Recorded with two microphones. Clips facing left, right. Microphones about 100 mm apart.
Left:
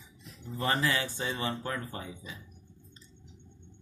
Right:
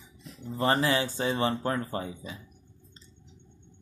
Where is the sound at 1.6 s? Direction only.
40° right (ahead or behind).